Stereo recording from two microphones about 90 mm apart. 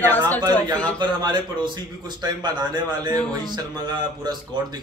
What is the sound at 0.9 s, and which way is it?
A man's voice, 60° right (ahead or behind).